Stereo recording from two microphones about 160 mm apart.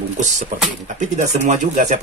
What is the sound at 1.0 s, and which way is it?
Speech, 50° right (ahead or behind).